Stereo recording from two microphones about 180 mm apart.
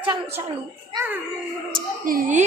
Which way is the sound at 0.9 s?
10° right (ahead or behind).